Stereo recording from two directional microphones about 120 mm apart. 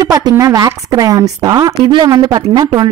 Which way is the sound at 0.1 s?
30° right (ahead or behind).